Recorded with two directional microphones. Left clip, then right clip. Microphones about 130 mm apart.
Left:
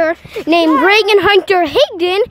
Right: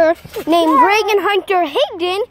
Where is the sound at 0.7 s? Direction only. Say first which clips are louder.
Left 2 dB; 40° left (ahead or behind).